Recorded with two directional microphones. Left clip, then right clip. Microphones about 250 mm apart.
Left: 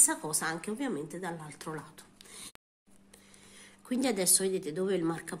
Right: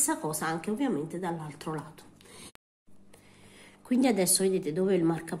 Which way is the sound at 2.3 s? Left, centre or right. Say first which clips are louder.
Left 1 dB; centre.